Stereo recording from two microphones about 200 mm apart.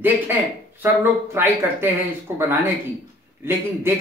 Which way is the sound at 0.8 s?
10° right (ahead or behind).